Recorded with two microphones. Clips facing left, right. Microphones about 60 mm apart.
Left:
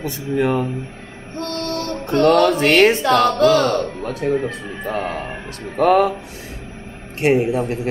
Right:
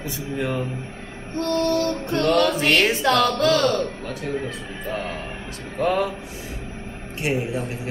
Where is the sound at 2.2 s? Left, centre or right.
Left.